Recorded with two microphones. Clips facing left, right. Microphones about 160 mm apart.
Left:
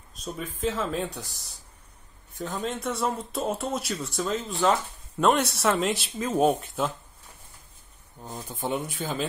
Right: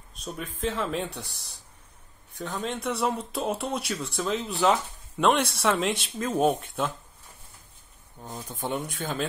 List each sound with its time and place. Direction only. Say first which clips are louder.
0.2 s speech: left 1 dB; centre (ahead or behind)
1.3 s speech: even; 55° right (ahead or behind)
2.6 s speech: right 1 dB; centre (ahead or behind)
8.2 s speech: left 1 dB; centre (ahead or behind)